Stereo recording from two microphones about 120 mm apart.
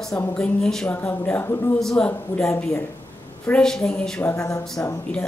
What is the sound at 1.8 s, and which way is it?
A woman's voice, 5° left (ahead or behind).